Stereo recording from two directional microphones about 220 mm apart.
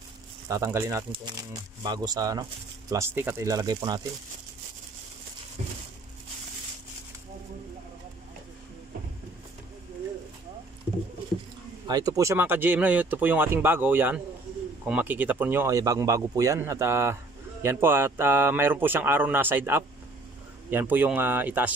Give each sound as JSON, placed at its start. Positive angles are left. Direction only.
{"t": 0.5, "sound": "speech", "side_deg": -10}
{"t": 11.9, "sound": "speech", "side_deg": -15}